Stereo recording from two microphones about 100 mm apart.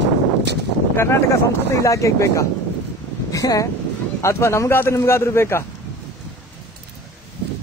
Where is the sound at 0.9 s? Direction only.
25° left (ahead or behind).